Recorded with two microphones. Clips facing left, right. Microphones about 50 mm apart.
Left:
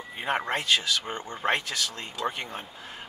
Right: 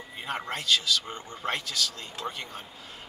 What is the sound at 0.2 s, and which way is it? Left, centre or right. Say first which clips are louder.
Speech: left 5 dB; left.